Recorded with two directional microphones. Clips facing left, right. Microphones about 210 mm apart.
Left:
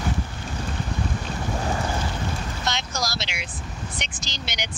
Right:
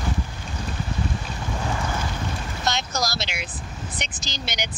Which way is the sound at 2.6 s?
40° right (ahead or behind).